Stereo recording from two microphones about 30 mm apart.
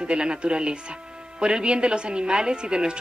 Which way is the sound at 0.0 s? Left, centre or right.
Right.